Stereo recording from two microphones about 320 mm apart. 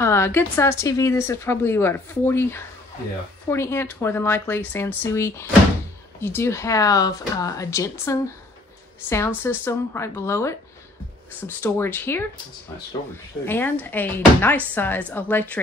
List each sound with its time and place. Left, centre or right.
0.0 s speech: centre
9.4 s speech: centre
13.5 s speech: centre